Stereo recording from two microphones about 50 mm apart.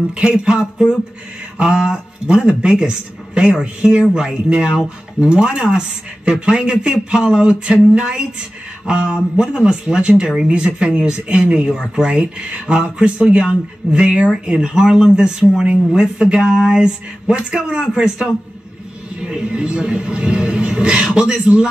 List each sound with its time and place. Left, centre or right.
0.1 s speech: centre